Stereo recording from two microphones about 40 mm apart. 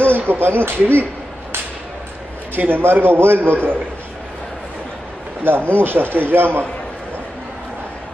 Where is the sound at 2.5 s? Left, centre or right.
Right.